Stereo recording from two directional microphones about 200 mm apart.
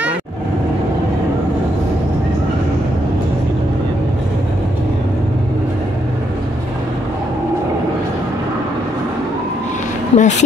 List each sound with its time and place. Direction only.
10.1 s speech: 35° left (ahead or behind)